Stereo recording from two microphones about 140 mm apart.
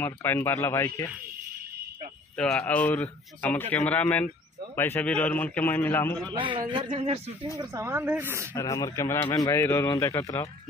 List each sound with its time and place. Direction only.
0.0 s speech: 15° left (ahead or behind)
2.3 s speech: 10° left (ahead or behind)
6.3 s a man's voice: 35° right (ahead or behind)
6.9 s speech: 50° right (ahead or behind)
7.5 s speech: 20° right (ahead or behind)
8.5 s speech: 25° left (ahead or behind)